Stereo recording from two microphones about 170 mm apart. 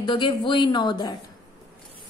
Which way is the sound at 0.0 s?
25° left (ahead or behind).